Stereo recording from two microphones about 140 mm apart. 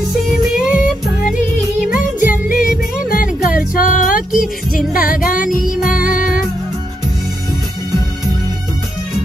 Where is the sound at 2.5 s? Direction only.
80° left.